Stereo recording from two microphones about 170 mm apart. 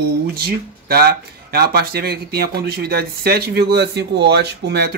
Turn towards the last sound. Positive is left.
turn(degrees=-75)  # may be behind; listen again after turning